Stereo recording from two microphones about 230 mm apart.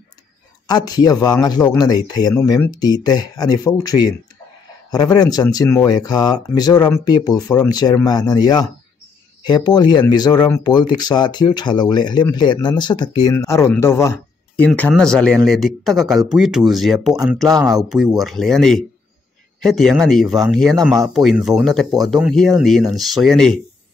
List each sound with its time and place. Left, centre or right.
0.7 s speech: centre
14.7 s speech: centre